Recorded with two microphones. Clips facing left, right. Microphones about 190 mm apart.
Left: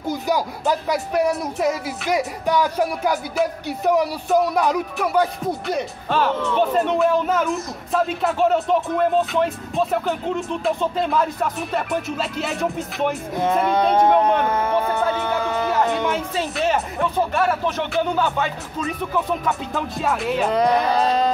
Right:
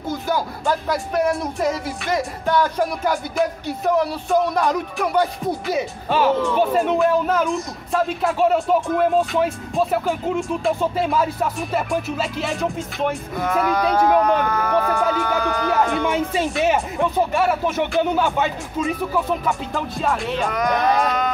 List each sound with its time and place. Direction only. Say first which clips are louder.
0.1 s music: left 1 dB; 15° left (ahead or behind)
13.4 s speech: left 2 dB; 25° left (ahead or behind)
14.2 s a sound: even; 25° left (ahead or behind)
16.6 s speech: left 1 dB; 15° right (ahead or behind)
19.1 s music: left 2 dB; centre (ahead or behind)
20.4 s speech: left 1 dB; 30° left (ahead or behind)